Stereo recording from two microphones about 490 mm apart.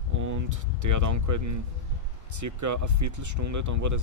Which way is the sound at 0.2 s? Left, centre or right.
Right.